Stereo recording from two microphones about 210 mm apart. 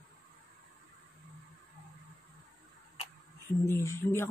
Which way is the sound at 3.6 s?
15° left (ahead or behind).